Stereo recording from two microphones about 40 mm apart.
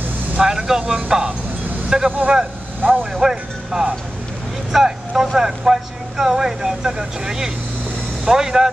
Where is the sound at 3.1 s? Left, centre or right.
Centre.